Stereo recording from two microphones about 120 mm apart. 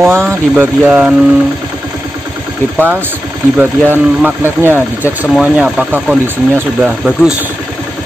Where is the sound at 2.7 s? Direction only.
15° right (ahead or behind).